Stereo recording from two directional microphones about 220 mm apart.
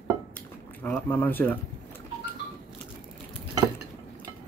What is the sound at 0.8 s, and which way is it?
Speech, 10° left (ahead or behind).